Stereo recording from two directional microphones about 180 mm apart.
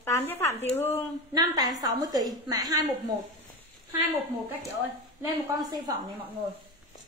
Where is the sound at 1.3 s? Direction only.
20° right (ahead or behind).